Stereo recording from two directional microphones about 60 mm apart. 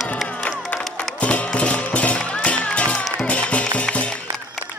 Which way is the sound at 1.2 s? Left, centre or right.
Centre.